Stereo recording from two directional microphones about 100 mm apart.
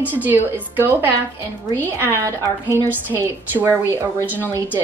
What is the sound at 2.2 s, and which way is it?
A woman's voice, 30° right (ahead or behind).